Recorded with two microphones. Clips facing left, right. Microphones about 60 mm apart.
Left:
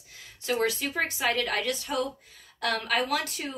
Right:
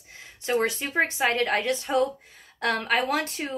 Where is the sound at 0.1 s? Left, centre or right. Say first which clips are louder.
Right 4 dB; right.